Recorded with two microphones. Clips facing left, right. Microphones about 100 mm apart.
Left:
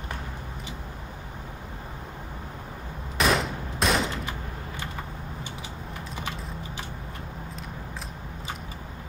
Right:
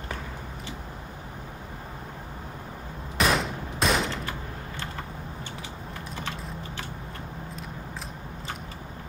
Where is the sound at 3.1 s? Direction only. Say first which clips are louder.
Left 1 dB; centre (ahead or behind).